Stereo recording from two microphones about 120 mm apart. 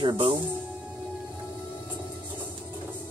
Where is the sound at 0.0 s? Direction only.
45° right (ahead or behind).